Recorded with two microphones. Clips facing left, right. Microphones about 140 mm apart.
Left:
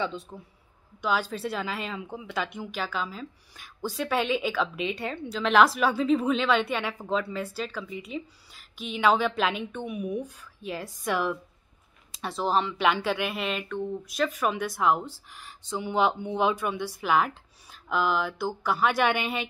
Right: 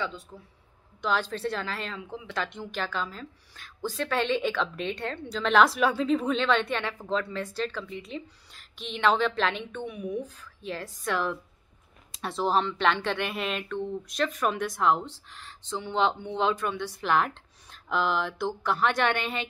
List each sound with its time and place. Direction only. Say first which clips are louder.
0.0 s speech: left 3 dB; 20° left (ahead or behind)
1.0 s a woman's voice: even; 5° left (ahead or behind)